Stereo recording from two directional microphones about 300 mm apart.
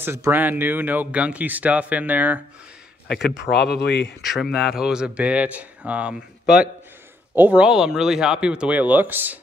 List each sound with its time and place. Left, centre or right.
0.0 s speech: centre
3.1 s speech: left
4.2 s speech: centre
7.3 s speech: centre